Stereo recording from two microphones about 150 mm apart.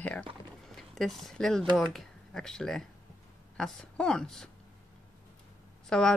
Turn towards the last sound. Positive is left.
turn(degrees=5)  # may be behind; listen again after turning